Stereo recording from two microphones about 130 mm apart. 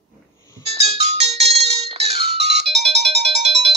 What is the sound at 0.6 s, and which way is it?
Music, 55° right (ahead or behind).